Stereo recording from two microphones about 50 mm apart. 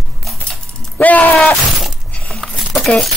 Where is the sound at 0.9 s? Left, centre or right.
Left.